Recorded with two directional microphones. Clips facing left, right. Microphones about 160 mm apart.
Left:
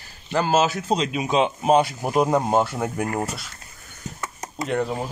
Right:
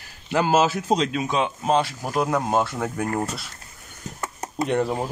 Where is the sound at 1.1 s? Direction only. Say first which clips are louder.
Left 3 dB; 20° left (ahead or behind).